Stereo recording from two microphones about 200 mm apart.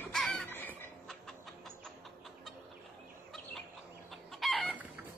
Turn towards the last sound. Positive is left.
turn(degrees=-5)  # may be behind; listen again after turning